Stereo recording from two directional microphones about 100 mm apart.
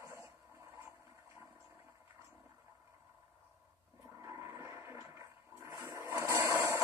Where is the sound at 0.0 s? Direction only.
30° right (ahead or behind).